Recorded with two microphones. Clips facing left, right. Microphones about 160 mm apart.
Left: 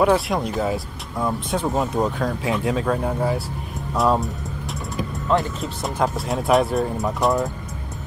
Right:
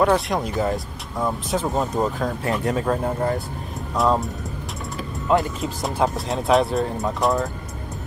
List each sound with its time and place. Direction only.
0.0 s speech: 5° left (ahead or behind)
5.3 s speech: centre (ahead or behind)